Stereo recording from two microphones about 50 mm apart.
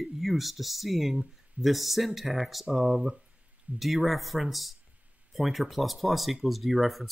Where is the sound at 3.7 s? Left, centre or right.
Right.